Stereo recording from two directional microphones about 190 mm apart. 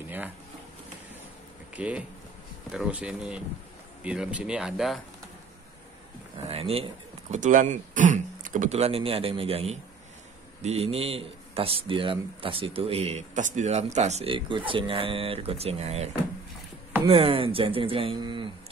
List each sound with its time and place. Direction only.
0.0 s speech: 10° right (ahead or behind)
1.8 s speech: 5° right (ahead or behind)
6.4 s speech: 30° right (ahead or behind)
17.1 s speech: 30° right (ahead or behind)